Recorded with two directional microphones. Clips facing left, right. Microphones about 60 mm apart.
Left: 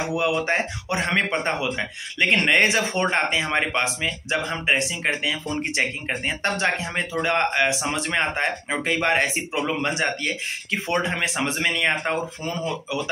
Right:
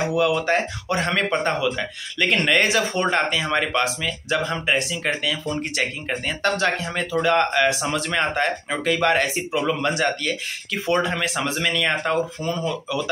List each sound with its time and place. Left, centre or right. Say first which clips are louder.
0.1 s speech: right 1 dB; left